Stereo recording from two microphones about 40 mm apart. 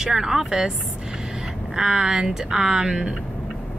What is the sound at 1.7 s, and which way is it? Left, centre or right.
Speech, centre.